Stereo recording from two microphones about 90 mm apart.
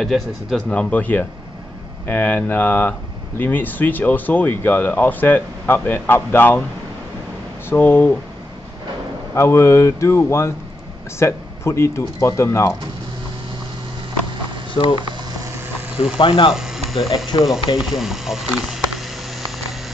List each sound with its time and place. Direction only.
0.0 s speech: centre (ahead or behind)
0.7 s speech: 15° left (ahead or behind)
7.7 s speech: 20° left (ahead or behind)
9.3 s speech: 30° left (ahead or behind)
14.7 s speech: 70° left (ahead or behind)
16.2 s speech: 70° left (ahead or behind)
16.5 s speech: 5° right (ahead or behind)
17.3 s speech: 55° left (ahead or behind)
17.7 s speech: 5° right (ahead or behind)